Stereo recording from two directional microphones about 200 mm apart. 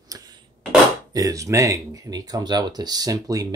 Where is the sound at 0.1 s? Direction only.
20° right (ahead or behind).